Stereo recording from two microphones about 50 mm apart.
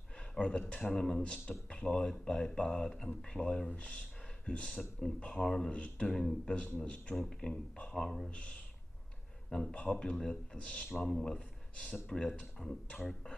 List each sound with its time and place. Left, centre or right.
0.3 s a sound: centre
0.6 s speech: centre
5.7 s speech: left
6.0 s speech: centre
6.8 s speech: left
7.2 s speech: centre
8.3 s speech: left
9.5 s speech: centre
11.0 s speech: centre
11.3 s speech: left